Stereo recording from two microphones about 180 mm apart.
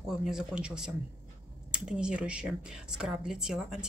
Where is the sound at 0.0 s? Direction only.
5° right (ahead or behind).